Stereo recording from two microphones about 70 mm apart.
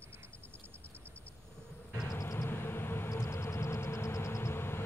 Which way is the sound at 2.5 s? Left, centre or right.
Left.